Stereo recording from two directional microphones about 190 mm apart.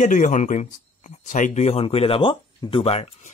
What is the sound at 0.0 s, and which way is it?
Speech, 40° left (ahead or behind).